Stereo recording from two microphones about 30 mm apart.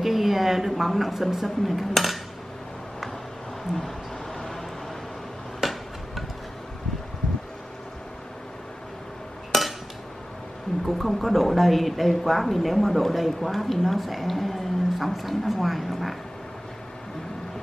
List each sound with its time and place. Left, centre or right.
0.0 s speech: centre
1.6 s speech: centre
4.3 s a sound: centre
5.6 s a sound: centre
9.5 s dishes: centre
10.9 s speech: centre